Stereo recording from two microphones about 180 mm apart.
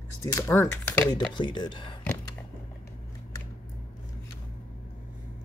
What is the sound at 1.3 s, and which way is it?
Speech, 25° left (ahead or behind).